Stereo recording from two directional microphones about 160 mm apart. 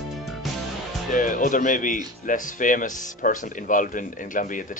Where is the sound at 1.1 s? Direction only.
55° left (ahead or behind).